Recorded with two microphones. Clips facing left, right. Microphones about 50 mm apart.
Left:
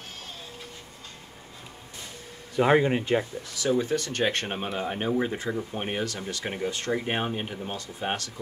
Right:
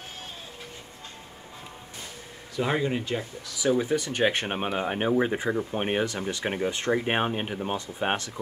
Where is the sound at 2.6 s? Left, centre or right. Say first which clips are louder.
Left 5 dB; left.